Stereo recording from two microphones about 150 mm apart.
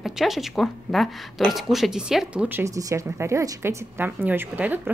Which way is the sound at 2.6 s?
20° right (ahead or behind).